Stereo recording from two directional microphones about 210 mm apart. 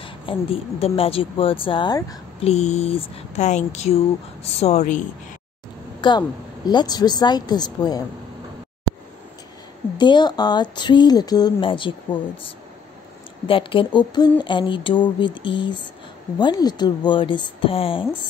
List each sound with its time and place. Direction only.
0.0 s speech: 25° left (ahead or behind)
2.4 s speech: 30° left (ahead or behind)
5.9 s speech: 20° left (ahead or behind)
9.9 s speech: 20° left (ahead or behind)
13.5 s speech: 25° left (ahead or behind)